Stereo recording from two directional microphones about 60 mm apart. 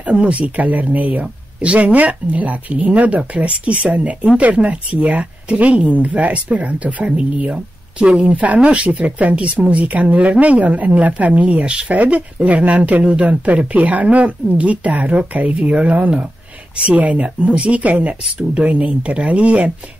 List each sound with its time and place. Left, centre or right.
0.0 s speech: right